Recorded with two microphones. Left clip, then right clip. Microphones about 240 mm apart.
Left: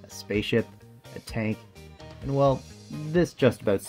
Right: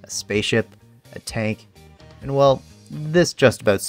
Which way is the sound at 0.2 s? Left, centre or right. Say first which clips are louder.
Right 5 dB; right.